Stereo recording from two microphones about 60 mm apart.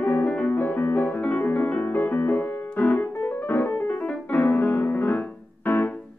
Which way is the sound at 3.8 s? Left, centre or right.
Left.